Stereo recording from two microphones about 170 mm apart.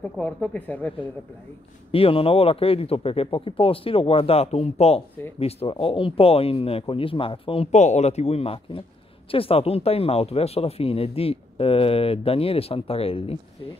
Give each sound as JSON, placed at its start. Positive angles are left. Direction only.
{"t": 0.0, "sound": "speech", "side_deg": 10}
{"t": 1.9, "sound": "speech", "side_deg": 35}